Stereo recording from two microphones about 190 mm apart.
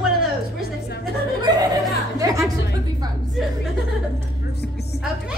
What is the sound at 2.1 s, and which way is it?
Music, 15° right (ahead or behind).